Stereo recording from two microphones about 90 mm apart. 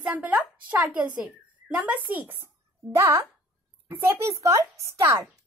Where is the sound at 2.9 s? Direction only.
30° right (ahead or behind).